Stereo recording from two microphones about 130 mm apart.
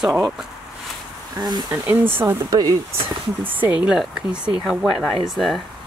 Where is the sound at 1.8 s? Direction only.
15° right (ahead or behind).